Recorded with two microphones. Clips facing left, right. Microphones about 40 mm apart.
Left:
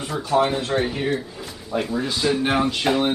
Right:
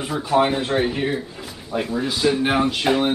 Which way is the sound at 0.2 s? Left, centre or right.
Centre.